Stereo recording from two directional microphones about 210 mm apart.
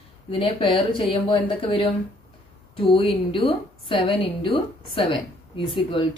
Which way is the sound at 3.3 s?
25° left (ahead or behind).